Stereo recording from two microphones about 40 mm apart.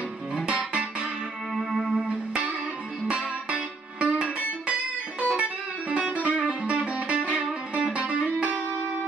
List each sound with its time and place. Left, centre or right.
0.5 s music: right
1.5 s music: centre
2.0 s music: right